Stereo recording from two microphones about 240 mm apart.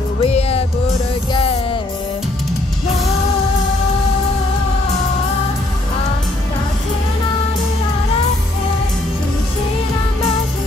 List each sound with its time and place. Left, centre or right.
0.2 s music: left